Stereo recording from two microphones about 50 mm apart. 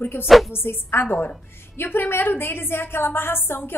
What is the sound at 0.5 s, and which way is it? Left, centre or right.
A woman's voice, left.